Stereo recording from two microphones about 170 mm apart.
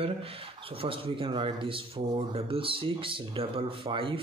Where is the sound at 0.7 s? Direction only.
35° right (ahead or behind).